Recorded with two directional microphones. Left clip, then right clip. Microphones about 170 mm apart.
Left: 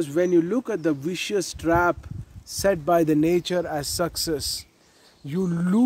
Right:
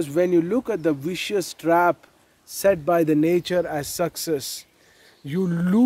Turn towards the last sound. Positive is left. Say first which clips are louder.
# right 2 dB
turn(degrees=-10)  # may be behind; listen again after turning